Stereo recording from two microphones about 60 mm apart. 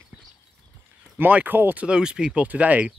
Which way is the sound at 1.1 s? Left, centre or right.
Right.